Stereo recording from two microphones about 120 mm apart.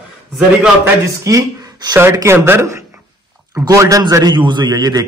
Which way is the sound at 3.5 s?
25° right (ahead or behind).